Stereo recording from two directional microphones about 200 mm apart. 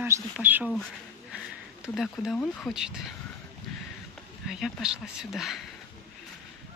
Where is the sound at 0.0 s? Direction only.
10° right (ahead or behind).